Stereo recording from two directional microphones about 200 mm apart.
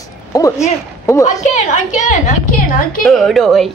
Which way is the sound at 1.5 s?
40° left (ahead or behind).